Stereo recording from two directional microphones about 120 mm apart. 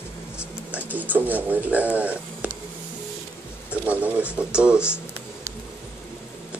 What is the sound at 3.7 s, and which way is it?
Speech, 15° right (ahead or behind).